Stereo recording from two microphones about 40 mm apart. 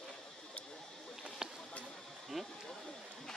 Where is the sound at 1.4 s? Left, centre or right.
Centre.